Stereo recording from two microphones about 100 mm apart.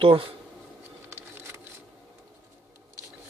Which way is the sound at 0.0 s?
65° right (ahead or behind).